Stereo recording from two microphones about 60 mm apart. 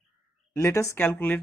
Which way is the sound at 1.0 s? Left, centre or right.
Left.